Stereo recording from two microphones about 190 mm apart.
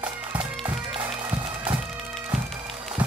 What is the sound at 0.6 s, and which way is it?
Music, 25° right (ahead or behind).